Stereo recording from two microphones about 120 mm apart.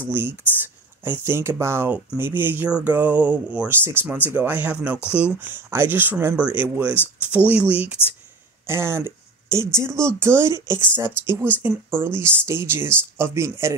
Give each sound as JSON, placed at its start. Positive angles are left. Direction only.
{"t": 0.1, "sound": "speech", "side_deg": -20}